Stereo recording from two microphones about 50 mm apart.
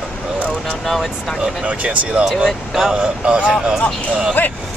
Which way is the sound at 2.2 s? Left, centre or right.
Centre.